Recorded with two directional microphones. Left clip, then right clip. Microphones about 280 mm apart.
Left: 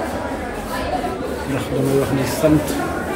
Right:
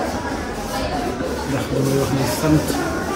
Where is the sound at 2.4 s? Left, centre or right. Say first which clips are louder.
Left 4 dB; centre.